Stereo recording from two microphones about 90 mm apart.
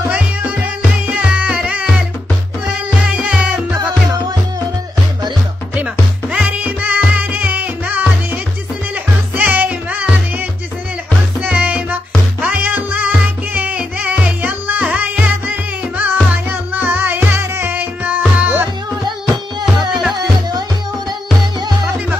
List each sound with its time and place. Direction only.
0.1 s music: 15° right (ahead or behind)
3.3 s music: 10° right (ahead or behind)
6.3 s music: 15° right (ahead or behind)
11.4 s music: 15° right (ahead or behind)